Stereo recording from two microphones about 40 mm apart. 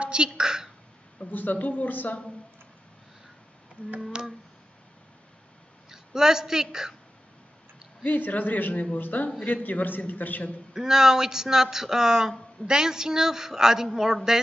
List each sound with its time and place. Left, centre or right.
0.0 s a woman's voice: right
1.3 s a man's voice: left
4.1 s a sound: right
5.9 s a woman's voice: centre
8.0 s a man's voice: left
10.7 s speech: centre